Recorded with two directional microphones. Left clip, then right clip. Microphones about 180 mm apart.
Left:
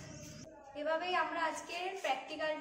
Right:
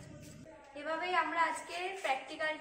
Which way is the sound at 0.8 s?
15° left (ahead or behind).